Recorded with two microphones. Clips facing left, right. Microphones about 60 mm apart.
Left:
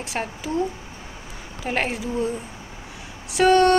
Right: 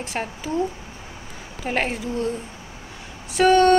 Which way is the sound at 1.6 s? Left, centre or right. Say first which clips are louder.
Right 1 dB; centre.